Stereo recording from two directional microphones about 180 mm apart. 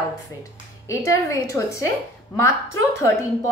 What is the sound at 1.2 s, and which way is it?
Speech, 15° left (ahead or behind).